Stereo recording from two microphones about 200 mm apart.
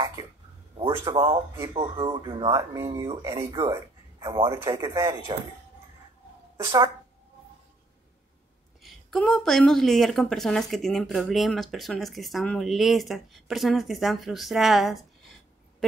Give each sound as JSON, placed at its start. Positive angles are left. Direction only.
{"t": 0.0, "sound": "a sound", "side_deg": -15}
{"t": 0.7, "sound": "speech", "side_deg": -25}
{"t": 6.5, "sound": "a woman's voice", "side_deg": -20}
{"t": 8.8, "sound": "a woman's voice", "side_deg": 0}